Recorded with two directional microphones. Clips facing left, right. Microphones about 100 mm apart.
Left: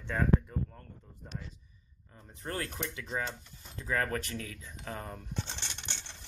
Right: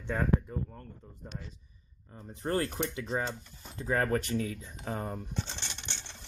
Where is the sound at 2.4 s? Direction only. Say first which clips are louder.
Right 6 dB; 35° right (ahead or behind).